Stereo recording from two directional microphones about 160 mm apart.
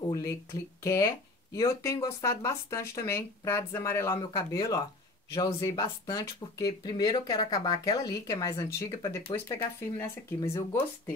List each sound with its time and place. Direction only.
0.1 s speech: 20° left (ahead or behind)